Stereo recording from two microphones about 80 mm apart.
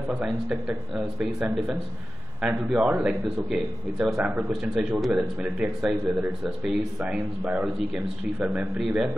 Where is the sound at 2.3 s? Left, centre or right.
Centre.